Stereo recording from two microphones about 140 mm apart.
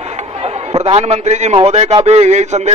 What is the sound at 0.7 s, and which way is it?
A man's voice, 50° right (ahead or behind).